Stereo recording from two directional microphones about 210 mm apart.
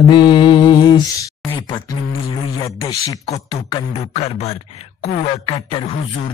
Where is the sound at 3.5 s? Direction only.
30° left (ahead or behind).